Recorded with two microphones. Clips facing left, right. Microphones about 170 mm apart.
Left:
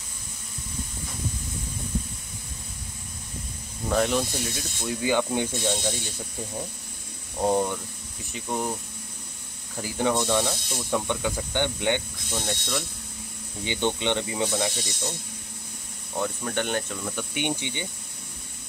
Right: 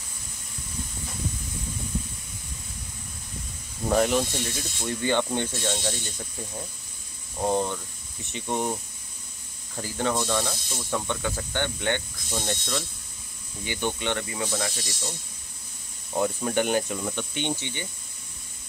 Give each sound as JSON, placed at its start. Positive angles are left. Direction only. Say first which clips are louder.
{"t": 3.9, "sound": "speech", "louder": "right 1 dB", "side_deg": -5}
{"t": 7.3, "sound": "speech", "louder": "left 2 dB", "side_deg": 15}
{"t": 8.3, "sound": "speech", "louder": "right 1 dB", "side_deg": 0}
{"t": 9.8, "sound": "speech", "louder": "left 2 dB", "side_deg": 15}
{"t": 12.4, "sound": "speech", "louder": "even", "side_deg": 0}
{"t": 13.7, "sound": "speech", "louder": "left 3 dB", "side_deg": 20}
{"t": 16.2, "sound": "speech", "louder": "right 3 dB", "side_deg": -10}
{"t": 17.1, "sound": "speech", "louder": "left 5 dB", "side_deg": 10}